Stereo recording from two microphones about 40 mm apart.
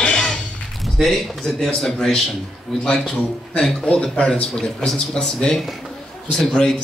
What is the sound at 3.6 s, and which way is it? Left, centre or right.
Speech, centre.